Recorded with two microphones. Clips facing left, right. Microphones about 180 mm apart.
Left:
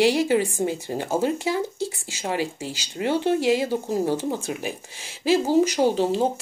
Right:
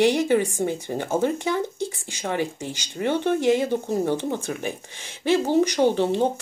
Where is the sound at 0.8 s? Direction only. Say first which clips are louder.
Right 2 dB; 20° right (ahead or behind).